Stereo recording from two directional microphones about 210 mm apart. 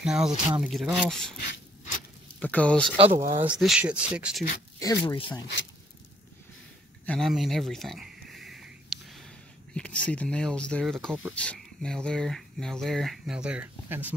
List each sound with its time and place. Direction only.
0.0 s speech: 5° right (ahead or behind)
2.4 s speech: 5° left (ahead or behind)
3.2 s speech: 15° right (ahead or behind)
3.4 s speech: 5° right (ahead or behind)
4.7 s speech: 20° left (ahead or behind)
7.1 s a sound: centre (ahead or behind)
9.8 s speech: 5° left (ahead or behind)